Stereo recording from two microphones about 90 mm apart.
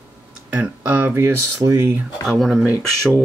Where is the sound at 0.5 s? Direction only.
20° right (ahead or behind).